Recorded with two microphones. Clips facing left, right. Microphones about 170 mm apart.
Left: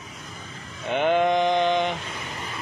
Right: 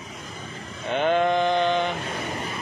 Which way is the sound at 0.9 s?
15° left (ahead or behind).